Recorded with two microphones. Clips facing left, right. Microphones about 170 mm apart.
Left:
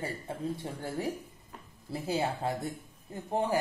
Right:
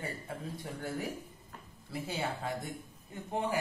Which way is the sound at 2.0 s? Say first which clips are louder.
Left 6 dB; 35° left (ahead or behind).